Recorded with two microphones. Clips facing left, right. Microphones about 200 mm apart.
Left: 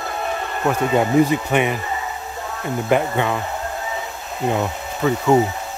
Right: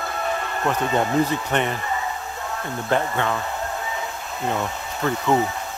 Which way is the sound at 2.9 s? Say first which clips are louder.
Left 3 dB; 15° left (ahead or behind).